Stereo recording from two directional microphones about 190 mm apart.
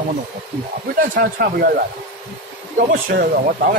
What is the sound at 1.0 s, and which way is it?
Speech, 55° right (ahead or behind).